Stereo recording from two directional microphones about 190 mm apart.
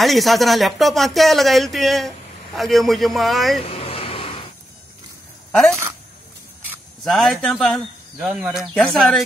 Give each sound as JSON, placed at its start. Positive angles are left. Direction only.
{"t": 0.0, "sound": "speech", "side_deg": 0}
{"t": 3.6, "sound": "a sound", "side_deg": 30}
{"t": 5.5, "sound": "speech", "side_deg": 5}